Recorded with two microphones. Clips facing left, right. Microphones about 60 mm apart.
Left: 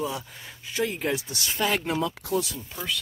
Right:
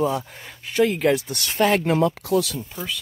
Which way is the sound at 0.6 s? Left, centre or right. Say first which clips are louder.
Right 9 dB; right.